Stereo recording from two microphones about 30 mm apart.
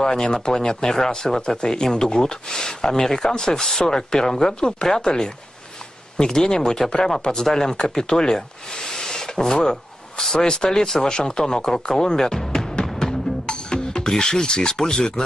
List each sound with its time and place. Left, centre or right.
0.0 s speech: centre
13.5 s speech: left